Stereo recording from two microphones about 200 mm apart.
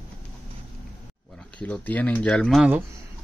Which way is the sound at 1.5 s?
5° left (ahead or behind).